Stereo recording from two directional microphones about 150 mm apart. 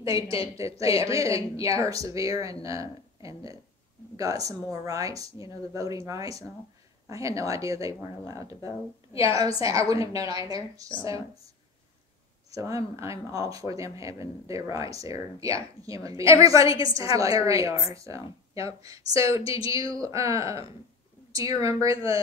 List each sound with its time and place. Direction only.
0.6 s speech: 20° right (ahead or behind)
12.4 s speech: 20° right (ahead or behind)